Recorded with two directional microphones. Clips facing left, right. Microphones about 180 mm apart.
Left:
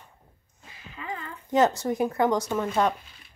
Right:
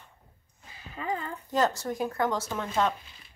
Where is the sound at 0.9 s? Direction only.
35° right (ahead or behind).